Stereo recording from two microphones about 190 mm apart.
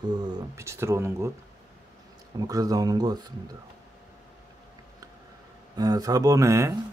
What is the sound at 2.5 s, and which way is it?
Speech, 20° right (ahead or behind).